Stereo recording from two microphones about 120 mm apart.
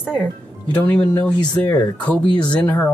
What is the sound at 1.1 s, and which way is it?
Speech, 15° left (ahead or behind).